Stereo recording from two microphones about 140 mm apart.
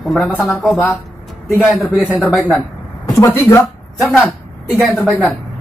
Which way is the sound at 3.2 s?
20° left (ahead or behind).